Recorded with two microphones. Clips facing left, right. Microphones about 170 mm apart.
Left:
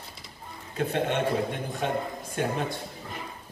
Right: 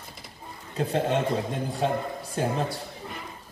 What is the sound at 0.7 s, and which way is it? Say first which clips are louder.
A man's voice: right 2 dB; 35° right (ahead or behind).